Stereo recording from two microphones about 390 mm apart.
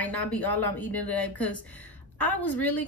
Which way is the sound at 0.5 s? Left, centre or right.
Left.